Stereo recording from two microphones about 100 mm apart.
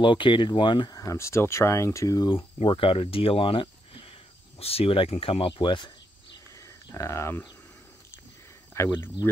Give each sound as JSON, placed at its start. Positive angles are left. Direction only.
{"t": 0.0, "sound": "speech", "side_deg": 55}
{"t": 1.1, "sound": "speech", "side_deg": 25}
{"t": 2.6, "sound": "speech", "side_deg": 65}
{"t": 4.6, "sound": "speech", "side_deg": 80}
{"t": 6.9, "sound": "speech", "side_deg": 30}
{"t": 8.7, "sound": "speech", "side_deg": 25}